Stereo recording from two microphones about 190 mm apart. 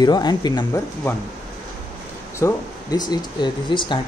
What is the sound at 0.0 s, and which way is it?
Speech, 20° left (ahead or behind).